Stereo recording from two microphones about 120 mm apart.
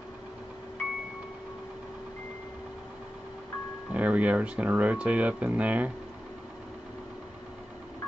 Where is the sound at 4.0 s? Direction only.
10° right (ahead or behind).